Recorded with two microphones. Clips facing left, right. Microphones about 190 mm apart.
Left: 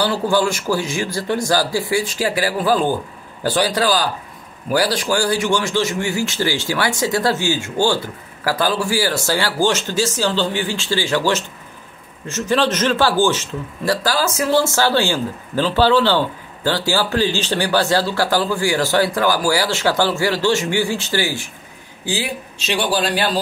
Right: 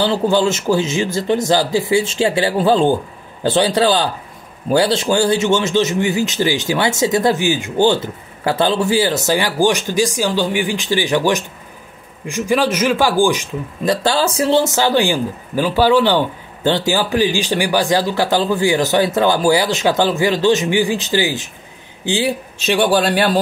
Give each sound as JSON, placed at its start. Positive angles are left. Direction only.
{"t": 0.0, "sound": "speech", "side_deg": -20}
{"t": 14.0, "sound": "speech", "side_deg": -30}
{"t": 14.6, "sound": "speech", "side_deg": -20}
{"t": 22.6, "sound": "a man's voice", "side_deg": -50}